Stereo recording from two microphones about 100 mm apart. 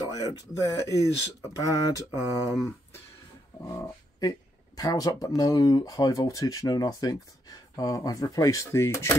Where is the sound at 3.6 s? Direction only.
35° left (ahead or behind).